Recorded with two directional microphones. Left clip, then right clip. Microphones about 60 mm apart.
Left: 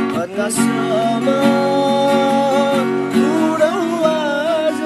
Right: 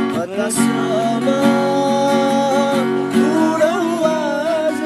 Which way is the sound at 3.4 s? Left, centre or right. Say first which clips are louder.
Even; centre.